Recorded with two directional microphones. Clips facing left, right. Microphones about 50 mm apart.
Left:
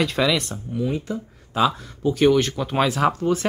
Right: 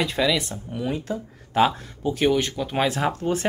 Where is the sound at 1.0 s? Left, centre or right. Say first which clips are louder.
Even; right.